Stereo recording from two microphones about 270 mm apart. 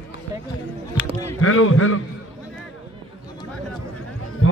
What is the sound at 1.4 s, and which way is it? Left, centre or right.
Speech, left.